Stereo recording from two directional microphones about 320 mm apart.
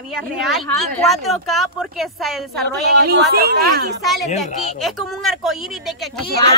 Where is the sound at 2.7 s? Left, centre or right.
Right.